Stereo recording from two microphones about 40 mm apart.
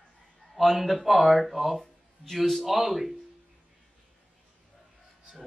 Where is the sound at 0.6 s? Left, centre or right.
Centre.